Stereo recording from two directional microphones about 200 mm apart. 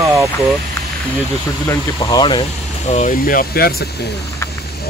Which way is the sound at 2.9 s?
40° left (ahead or behind).